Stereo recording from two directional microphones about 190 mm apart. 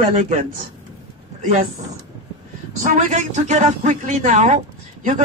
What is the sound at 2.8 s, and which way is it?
Speech, 40° right (ahead or behind).